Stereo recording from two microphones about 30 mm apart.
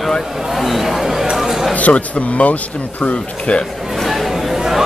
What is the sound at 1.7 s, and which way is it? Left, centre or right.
Speech, left.